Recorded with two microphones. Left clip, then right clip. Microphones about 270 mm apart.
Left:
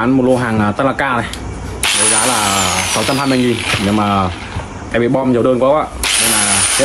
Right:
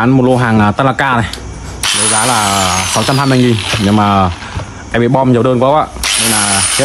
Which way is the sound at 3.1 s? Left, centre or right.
Right.